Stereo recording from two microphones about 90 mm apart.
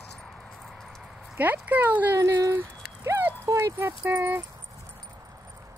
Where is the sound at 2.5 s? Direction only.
25° right (ahead or behind).